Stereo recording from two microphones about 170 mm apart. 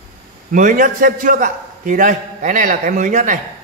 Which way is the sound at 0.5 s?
50° right (ahead or behind).